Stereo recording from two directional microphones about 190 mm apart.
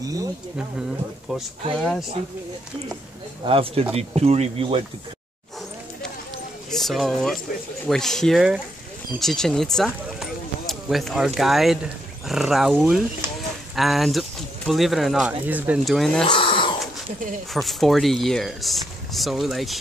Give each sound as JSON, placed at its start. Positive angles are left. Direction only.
{"t": 0.0, "sound": "speech", "side_deg": -20}
{"t": 3.4, "sound": "speech", "side_deg": -30}
{"t": 6.7, "sound": "speech", "side_deg": 0}
{"t": 16.3, "sound": "a sound", "side_deg": 25}
{"t": 17.6, "sound": "speech", "side_deg": 0}